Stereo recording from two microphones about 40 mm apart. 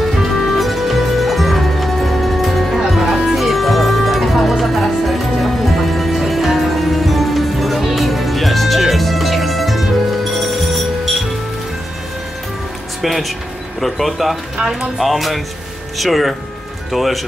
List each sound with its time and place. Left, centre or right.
0.0 s music: centre
13.0 s a sound: centre
13.7 s speech: centre
15.0 s speech: centre